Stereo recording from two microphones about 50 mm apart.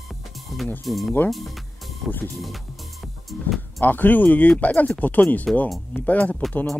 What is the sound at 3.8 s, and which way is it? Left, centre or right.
Speech, left.